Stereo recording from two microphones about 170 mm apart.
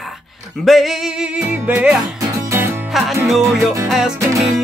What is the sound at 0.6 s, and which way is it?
Music, centre (ahead or behind).